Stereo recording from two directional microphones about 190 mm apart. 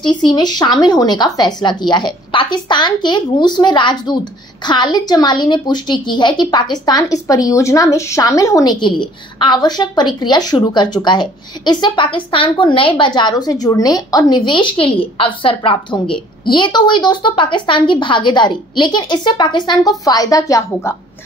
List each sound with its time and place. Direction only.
0.0 s a woman's voice: 25° left (ahead or behind)